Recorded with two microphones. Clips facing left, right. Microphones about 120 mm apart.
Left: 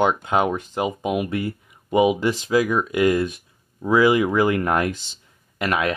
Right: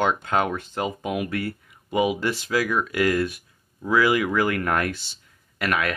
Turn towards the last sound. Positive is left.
turn(degrees=25)  # may be behind; listen again after turning